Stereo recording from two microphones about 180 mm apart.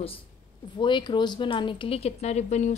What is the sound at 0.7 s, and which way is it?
A woman's voice, 25° left (ahead or behind).